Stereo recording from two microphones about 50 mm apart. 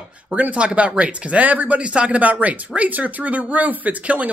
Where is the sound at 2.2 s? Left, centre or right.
Right.